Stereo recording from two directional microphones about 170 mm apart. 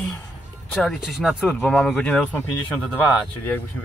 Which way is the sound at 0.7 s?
5° left (ahead or behind).